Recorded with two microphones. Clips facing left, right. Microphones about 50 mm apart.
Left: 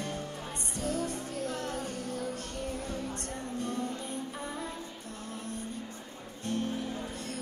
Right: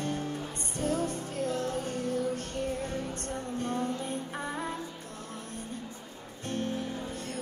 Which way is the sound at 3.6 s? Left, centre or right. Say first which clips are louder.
Right 3 dB; right.